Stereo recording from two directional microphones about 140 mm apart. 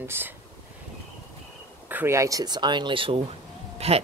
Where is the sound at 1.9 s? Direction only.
15° right (ahead or behind).